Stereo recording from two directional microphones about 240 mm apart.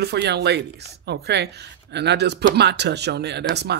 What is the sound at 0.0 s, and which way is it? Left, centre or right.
Speech, right.